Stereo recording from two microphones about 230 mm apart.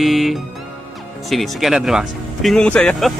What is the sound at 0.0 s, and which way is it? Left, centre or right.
Speech, centre.